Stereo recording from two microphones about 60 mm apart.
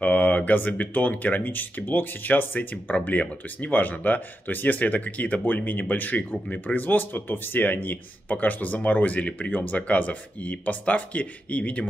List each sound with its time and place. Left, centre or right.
0.0 s speech: left